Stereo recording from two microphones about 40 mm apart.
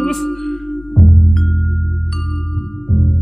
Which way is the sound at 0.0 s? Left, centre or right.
Centre.